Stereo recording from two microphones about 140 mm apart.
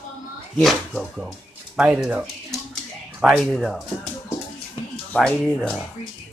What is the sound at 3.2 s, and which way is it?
Speech, centre (ahead or behind).